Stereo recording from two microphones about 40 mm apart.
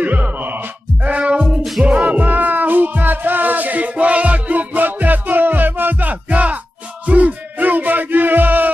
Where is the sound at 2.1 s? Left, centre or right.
Right.